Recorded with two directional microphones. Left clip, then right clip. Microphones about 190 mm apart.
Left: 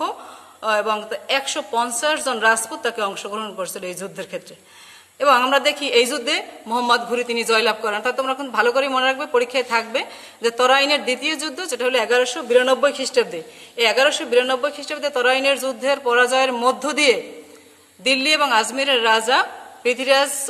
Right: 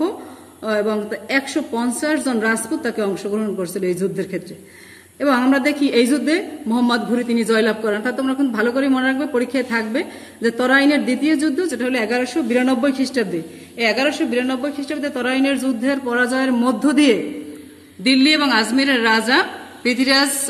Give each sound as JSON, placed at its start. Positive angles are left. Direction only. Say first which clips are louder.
{"t": 0.7, "sound": "a woman's voice", "louder": "even", "side_deg": 30}